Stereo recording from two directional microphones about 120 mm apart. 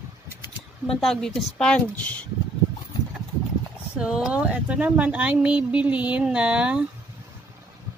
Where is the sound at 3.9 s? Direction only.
5° right (ahead or behind).